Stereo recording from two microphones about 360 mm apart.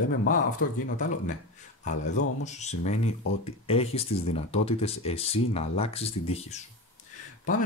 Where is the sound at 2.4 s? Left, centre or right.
Centre.